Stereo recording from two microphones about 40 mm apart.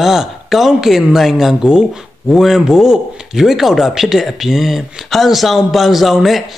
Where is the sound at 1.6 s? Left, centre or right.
Right.